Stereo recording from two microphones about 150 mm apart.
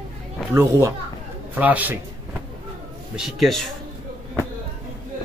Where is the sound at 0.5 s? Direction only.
20° right (ahead or behind).